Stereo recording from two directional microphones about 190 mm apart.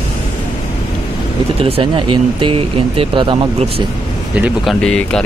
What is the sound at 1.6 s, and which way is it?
Speech, 30° right (ahead or behind).